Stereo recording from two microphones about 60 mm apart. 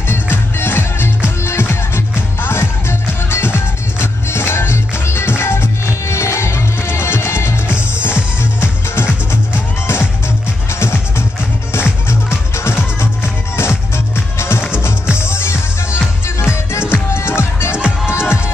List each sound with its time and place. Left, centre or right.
0.1 s music: left
15.1 s music: left
17.7 s music: centre
18.1 s music: left